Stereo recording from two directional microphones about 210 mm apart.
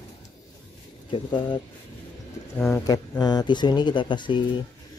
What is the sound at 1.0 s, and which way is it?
Speech, 20° left (ahead or behind).